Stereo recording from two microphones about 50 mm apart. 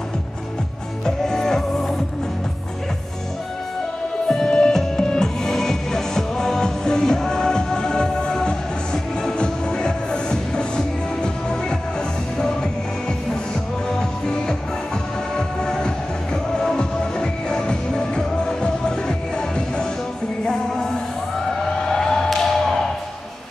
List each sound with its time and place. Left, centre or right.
1.0 s music: centre
4.3 s music: centre
13.9 s music: centre
21.6 s emergency vehicle: centre